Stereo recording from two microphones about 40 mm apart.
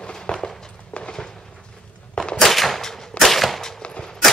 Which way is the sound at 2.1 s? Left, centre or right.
Left.